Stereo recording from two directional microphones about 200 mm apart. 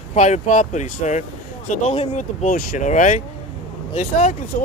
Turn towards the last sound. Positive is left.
turn(degrees=35)  # may be behind; listen again after turning